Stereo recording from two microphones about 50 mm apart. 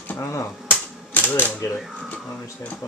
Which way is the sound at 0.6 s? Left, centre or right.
Left.